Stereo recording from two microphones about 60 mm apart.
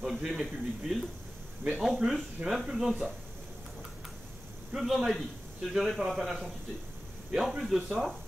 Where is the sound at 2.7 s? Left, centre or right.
Centre.